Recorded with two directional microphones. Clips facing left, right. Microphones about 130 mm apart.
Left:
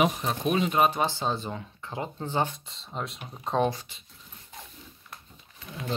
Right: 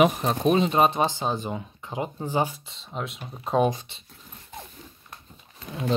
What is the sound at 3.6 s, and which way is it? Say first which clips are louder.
Speech: right 3 dB; 20° right (ahead or behind).